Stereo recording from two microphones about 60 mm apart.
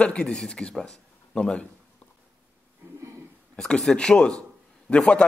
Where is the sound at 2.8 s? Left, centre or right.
Right.